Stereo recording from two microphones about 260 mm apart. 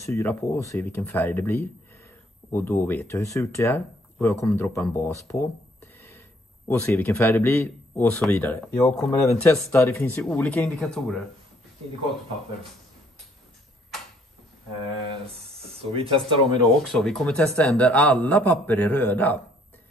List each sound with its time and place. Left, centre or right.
0.0 s speech: centre
15.7 s speech: right
16.8 s speech: centre